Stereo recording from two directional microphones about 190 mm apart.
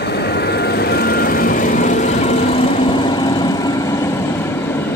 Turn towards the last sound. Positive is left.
turn(degrees=15)  # may be behind; listen again after turning